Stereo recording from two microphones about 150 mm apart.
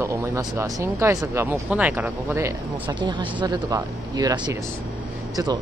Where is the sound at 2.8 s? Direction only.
30° right (ahead or behind).